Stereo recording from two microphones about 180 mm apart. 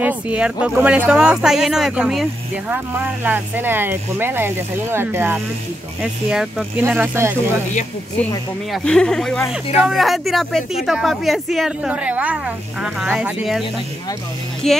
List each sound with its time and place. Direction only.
0.0 s speech: 5° right (ahead or behind)
6.8 s speech: 10° right (ahead or behind)
8.7 s speech: 5° left (ahead or behind)